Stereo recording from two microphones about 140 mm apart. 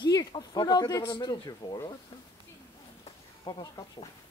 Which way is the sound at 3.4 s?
30° left (ahead or behind).